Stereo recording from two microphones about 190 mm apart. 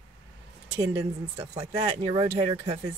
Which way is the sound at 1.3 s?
35° right (ahead or behind).